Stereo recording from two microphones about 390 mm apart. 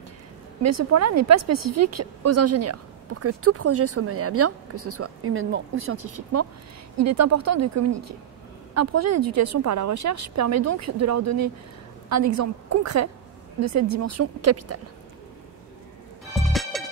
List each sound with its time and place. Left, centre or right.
1.2 s a woman's voice: right
5.9 s a woman's voice: right
16.3 s music: centre